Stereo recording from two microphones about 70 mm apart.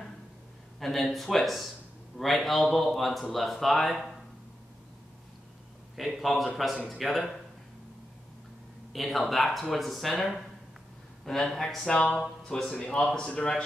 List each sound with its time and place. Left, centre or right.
0.7 s speech: centre
5.9 s speech: centre
8.9 s speech: centre
11.9 s a man's voice: centre
12.2 s a man's voice: centre